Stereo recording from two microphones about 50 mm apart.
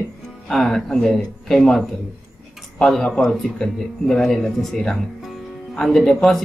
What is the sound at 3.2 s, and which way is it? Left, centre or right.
Speech, centre.